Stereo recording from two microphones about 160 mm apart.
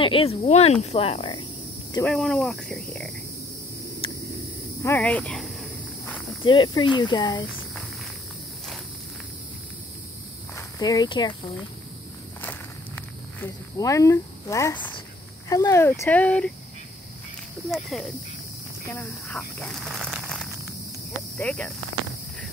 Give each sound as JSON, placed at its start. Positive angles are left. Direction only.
{"t": 0.0, "sound": "speech", "side_deg": 35}
{"t": 2.0, "sound": "speech", "side_deg": 5}
{"t": 4.8, "sound": "snake", "side_deg": 10}
{"t": 6.4, "sound": "speech", "side_deg": 30}
{"t": 10.5, "sound": "speech", "side_deg": 20}
{"t": 13.4, "sound": "speech", "side_deg": 20}
{"t": 17.6, "sound": "speech", "side_deg": 0}
{"t": 18.9, "sound": "speech", "side_deg": 10}